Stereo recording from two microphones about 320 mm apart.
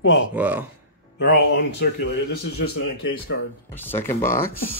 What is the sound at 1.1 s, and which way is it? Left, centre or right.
A man's voice, left.